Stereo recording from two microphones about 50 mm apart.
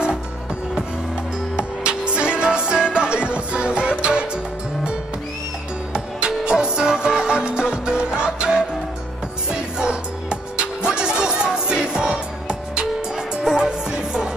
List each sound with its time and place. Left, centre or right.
1.6 s music: centre
5.9 s music: centre